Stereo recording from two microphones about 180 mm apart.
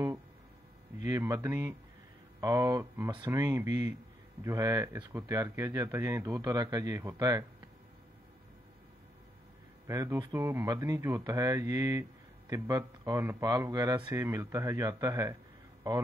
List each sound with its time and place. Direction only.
1.0 s a man's voice: 20° right (ahead or behind)
9.8 s speech: 20° right (ahead or behind)